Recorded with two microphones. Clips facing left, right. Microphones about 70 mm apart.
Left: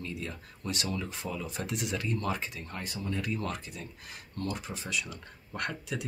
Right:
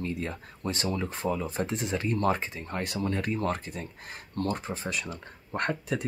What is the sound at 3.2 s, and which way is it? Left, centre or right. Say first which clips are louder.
Speech: right 5 dB; right.